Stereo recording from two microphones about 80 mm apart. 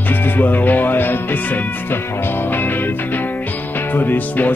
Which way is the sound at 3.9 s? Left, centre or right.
Left.